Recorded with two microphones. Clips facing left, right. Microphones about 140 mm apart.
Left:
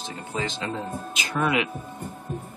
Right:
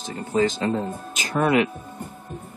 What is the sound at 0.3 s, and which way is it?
A man's voice, 45° right (ahead or behind).